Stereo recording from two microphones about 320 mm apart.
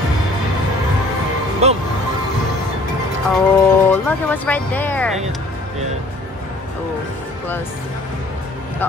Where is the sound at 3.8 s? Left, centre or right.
Centre.